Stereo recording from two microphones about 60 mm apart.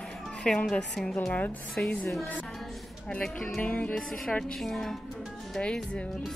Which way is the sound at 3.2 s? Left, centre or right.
Centre.